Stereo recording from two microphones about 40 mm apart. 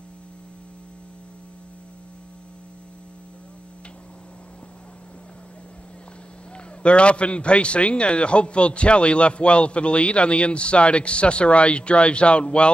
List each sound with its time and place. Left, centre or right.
6.8 s a man's voice: left